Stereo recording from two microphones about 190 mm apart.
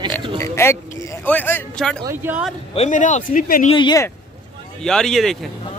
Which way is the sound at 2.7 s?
40° left (ahead or behind).